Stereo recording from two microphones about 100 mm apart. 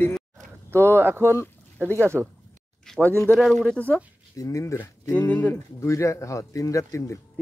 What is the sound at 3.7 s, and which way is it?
Speech, 15° left (ahead or behind).